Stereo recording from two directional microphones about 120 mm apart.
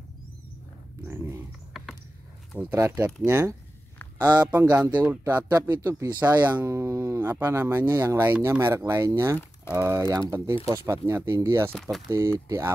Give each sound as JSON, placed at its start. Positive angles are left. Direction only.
{"t": 1.0, "sound": "pig", "side_deg": -25}
{"t": 2.7, "sound": "speech", "side_deg": -25}
{"t": 4.2, "sound": "speech", "side_deg": -35}
{"t": 4.5, "sound": "speech", "side_deg": -15}
{"t": 5.2, "sound": "speech", "side_deg": -30}
{"t": 6.5, "sound": "speech", "side_deg": -25}
{"t": 8.0, "sound": "speech", "side_deg": -30}
{"t": 8.3, "sound": "speech", "side_deg": -20}
{"t": 11.7, "sound": "speech", "side_deg": 5}
{"t": 12.1, "sound": "speech", "side_deg": -25}